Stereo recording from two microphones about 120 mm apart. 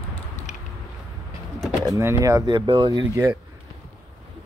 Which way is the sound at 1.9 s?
25° right (ahead or behind).